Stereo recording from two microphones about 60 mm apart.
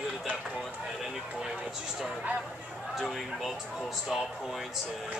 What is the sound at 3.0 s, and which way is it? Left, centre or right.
Speech, centre.